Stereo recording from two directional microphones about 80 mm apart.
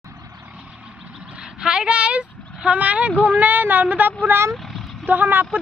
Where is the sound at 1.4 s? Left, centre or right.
Centre.